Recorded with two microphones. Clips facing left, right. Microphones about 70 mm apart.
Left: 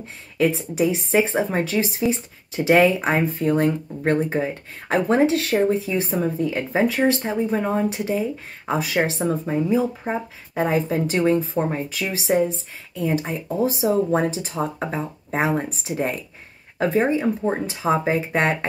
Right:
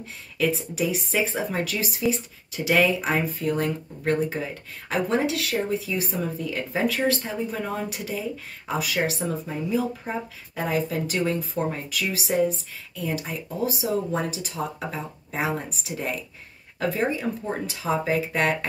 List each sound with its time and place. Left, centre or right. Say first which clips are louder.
0.4 s speech: left 5 dB; left